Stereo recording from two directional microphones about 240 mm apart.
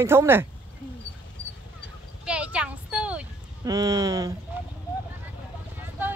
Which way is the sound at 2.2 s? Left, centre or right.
Centre.